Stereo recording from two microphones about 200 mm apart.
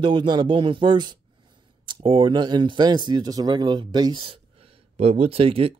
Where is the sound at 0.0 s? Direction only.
25° right (ahead or behind).